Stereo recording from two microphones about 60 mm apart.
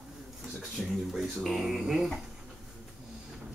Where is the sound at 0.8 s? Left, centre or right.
Centre.